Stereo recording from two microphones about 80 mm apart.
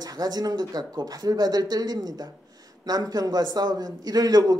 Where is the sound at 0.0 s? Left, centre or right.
Right.